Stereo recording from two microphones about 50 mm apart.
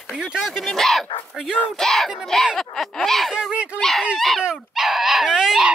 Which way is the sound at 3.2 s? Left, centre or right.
Centre.